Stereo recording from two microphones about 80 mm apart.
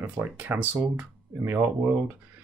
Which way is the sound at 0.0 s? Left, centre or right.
Right.